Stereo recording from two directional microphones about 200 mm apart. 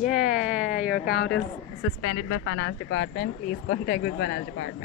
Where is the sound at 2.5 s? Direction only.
70° left (ahead or behind).